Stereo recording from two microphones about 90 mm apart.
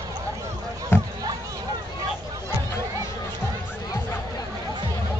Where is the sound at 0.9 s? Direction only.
20° left (ahead or behind).